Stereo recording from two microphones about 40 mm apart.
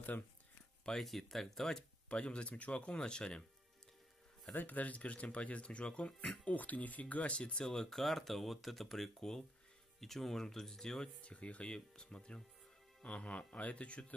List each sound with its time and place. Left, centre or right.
1.0 s speech: centre
2.0 s speech: left
4.6 s speech: left
6.4 s speech: left
7.7 s speech: centre
11.1 s speech: left
11.7 s speech: left